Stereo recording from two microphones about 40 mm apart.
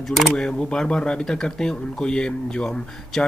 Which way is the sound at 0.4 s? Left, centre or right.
Centre.